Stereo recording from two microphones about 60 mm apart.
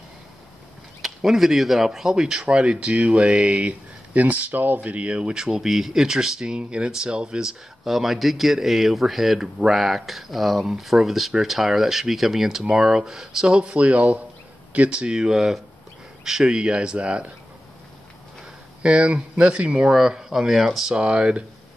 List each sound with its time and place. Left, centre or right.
1.0 s speech: centre
18.8 s speech: centre
21.0 s speech: centre